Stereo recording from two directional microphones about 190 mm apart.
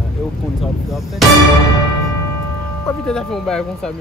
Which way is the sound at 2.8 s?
5° left (ahead or behind).